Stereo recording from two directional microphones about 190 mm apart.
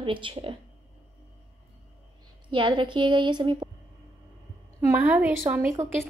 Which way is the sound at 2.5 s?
25° right (ahead or behind).